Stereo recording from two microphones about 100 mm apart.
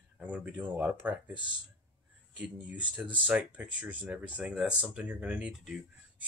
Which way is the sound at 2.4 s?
10° right (ahead or behind).